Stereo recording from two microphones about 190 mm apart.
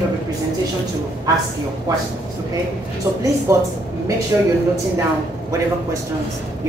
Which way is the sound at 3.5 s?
15° right (ahead or behind).